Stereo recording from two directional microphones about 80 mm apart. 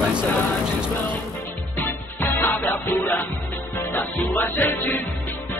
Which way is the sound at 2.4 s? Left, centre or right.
Left.